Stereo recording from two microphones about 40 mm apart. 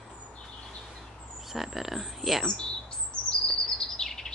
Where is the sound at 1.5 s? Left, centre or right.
Centre.